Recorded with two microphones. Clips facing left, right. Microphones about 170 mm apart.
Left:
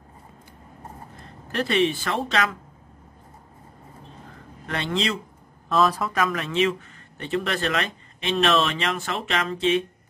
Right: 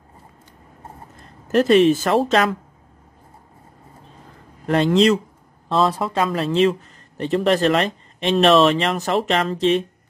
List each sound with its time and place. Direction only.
1.5 s speech: 45° right (ahead or behind)
4.6 s speech: 40° right (ahead or behind)
5.7 s a man's voice: 30° right (ahead or behind)